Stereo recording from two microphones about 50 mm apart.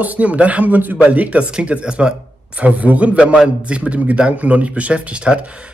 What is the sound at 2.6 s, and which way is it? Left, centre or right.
Speech, right.